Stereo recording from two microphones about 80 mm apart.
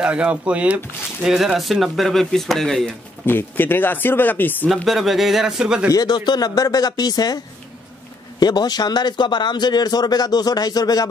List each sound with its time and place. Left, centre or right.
0.0 s speech: centre
1.2 s speech: centre
3.3 s speech: left
4.8 s speech: centre
5.9 s a man's voice: left